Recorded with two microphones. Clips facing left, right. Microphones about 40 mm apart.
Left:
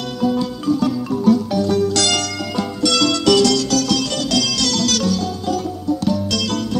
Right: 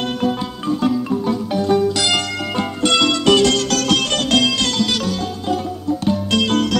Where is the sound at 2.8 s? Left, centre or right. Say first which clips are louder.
Right 1 dB; right.